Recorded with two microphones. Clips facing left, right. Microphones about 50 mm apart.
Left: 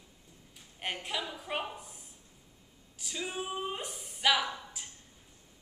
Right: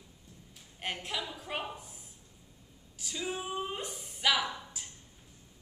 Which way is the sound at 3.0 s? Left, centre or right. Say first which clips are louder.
Even; centre.